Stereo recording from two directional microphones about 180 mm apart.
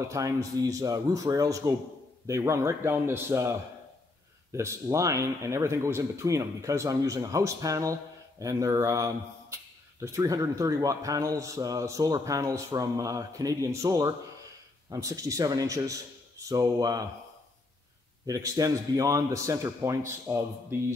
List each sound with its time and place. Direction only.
0.1 s speech: 20° right (ahead or behind)
4.6 s speech: 15° right (ahead or behind)
18.2 s speech: 20° right (ahead or behind)